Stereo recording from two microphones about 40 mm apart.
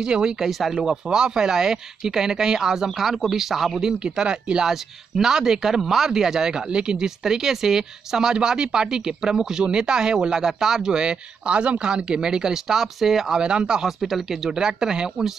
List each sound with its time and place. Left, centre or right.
0.0 s speech: centre
0.5 s speech: centre
0.7 s speech: centre
4.0 s speech: right
13.4 s speech: right
13.8 s speech: centre